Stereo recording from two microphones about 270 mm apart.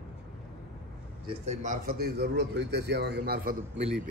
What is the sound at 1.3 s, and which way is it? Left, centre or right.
A man's voice, right.